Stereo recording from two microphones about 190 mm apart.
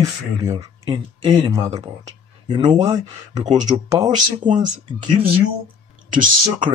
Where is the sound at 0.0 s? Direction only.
15° right (ahead or behind).